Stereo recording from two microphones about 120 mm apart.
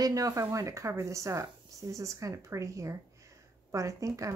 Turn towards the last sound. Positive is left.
turn(degrees=-25)  # may be behind; listen again after turning